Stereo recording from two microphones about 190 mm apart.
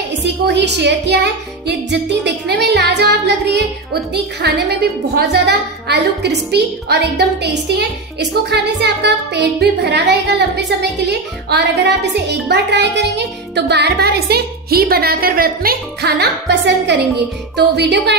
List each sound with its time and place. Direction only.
0.2 s music: 65° right (ahead or behind)